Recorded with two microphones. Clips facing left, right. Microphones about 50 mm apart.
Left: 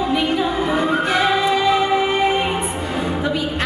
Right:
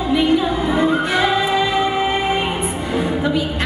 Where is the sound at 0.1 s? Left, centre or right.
Left.